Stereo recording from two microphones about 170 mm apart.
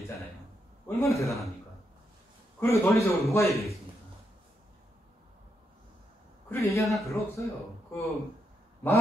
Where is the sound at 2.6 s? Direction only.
15° left (ahead or behind).